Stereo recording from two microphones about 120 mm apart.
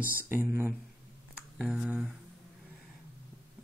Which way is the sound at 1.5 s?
5° right (ahead or behind).